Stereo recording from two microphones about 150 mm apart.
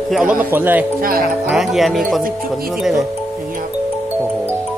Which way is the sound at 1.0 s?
70° right (ahead or behind).